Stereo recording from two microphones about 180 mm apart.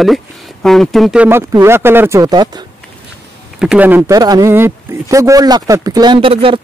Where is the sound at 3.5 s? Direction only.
5° right (ahead or behind).